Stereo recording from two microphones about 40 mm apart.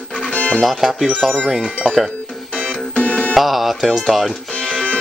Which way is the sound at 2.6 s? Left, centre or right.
Left.